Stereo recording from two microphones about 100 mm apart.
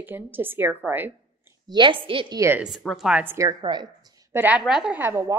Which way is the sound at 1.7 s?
55° right (ahead or behind).